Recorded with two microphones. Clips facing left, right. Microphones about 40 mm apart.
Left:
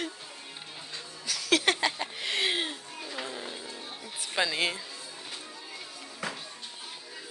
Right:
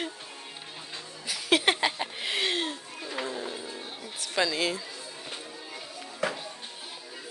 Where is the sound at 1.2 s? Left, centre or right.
Centre.